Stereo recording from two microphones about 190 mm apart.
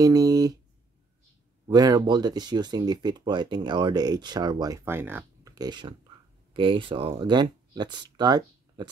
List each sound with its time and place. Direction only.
0.0 s speech: 20° right (ahead or behind)
1.7 s speech: 20° right (ahead or behind)